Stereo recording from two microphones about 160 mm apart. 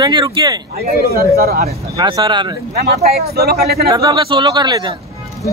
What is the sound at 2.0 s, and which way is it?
Speech, 25° right (ahead or behind).